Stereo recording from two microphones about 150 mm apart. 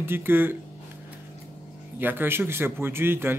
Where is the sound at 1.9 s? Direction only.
15° right (ahead or behind).